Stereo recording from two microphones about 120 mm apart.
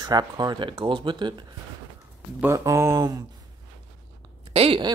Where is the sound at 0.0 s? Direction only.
35° right (ahead or behind).